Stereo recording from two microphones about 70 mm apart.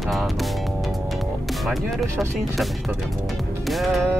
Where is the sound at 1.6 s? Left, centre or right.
Centre.